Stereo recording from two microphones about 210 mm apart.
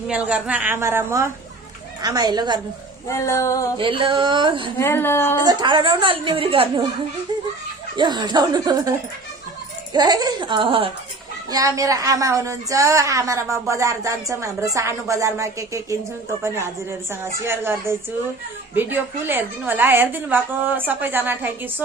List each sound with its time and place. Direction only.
0.1 s a woman's voice: 5° right (ahead or behind)
3.1 s female singing: 15° left (ahead or behind)
3.7 s a woman's voice: 25° right (ahead or behind)
4.7 s female singing: 10° left (ahead or behind)
5.4 s a woman's voice: 20° right (ahead or behind)
7.9 s a woman's voice: 20° right (ahead or behind)
9.9 s a woman's voice: 20° right (ahead or behind)
17.1 s a woman's voice: 10° right (ahead or behind)